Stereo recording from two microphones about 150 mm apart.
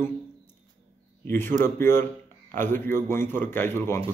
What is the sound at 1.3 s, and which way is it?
A man's voice, 15° left (ahead or behind).